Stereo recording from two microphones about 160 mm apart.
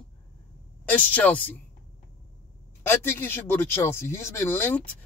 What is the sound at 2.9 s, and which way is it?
A man's voice, 15° left (ahead or behind).